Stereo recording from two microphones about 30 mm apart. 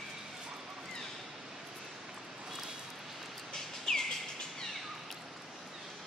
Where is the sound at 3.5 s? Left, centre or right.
Centre.